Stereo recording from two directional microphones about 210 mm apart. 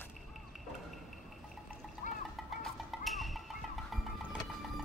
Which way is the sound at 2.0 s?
35° left (ahead or behind).